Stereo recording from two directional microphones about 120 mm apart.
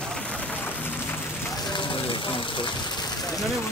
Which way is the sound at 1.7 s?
45° left (ahead or behind).